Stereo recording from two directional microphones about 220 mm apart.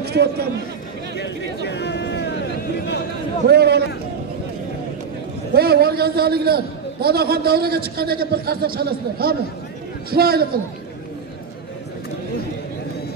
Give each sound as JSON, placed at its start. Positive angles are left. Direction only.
{"t": 0.0, "sound": "a man's voice", "side_deg": -50}
{"t": 1.1, "sound": "speech", "side_deg": 50}
{"t": 3.4, "sound": "a man's voice", "side_deg": -50}
{"t": 5.5, "sound": "a man's voice", "side_deg": -45}